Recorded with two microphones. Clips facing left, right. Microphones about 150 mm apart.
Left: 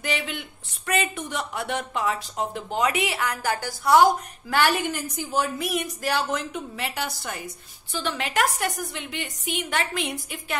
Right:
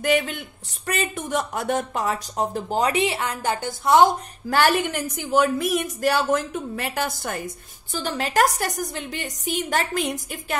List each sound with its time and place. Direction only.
0.0 s speech: 45° right (ahead or behind); by 4.2 s 25° right (ahead or behind)
4.5 s a woman's voice: 45° right (ahead or behind); by 5.7 s 60° right (ahead or behind)
5.7 s a woman's voice: 45° right (ahead or behind)